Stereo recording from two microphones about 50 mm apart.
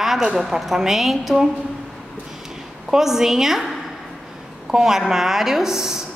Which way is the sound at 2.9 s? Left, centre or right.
Centre.